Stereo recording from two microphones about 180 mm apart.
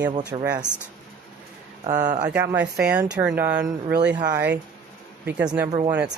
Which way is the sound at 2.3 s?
10° right (ahead or behind).